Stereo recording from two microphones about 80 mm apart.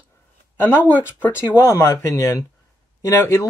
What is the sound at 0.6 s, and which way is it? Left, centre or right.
Speech, left.